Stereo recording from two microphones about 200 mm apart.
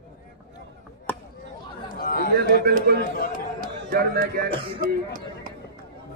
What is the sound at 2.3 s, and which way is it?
Speech, 50° right (ahead or behind).